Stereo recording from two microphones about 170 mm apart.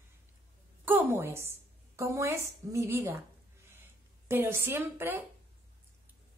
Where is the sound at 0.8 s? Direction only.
10° right (ahead or behind).